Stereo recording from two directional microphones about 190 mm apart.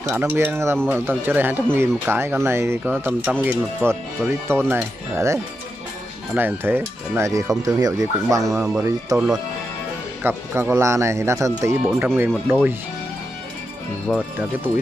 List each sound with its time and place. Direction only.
0.1 s speech: 10° right (ahead or behind)
10.2 s speech: 10° right (ahead or behind)
14.1 s speech: centre (ahead or behind)